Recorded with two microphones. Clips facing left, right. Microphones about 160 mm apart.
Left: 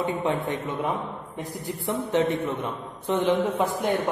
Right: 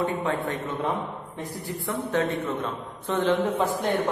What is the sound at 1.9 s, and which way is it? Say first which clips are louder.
A man's voice: left 2 dB; 15° left (ahead or behind).